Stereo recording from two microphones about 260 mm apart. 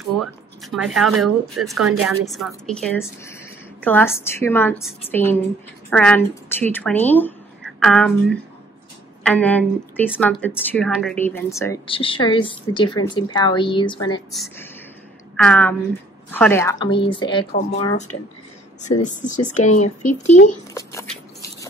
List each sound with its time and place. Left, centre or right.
0.2 s a woman's voice: centre
14.3 s speech: centre
17.5 s speech: left
17.7 s speech: left
20.7 s a sound: centre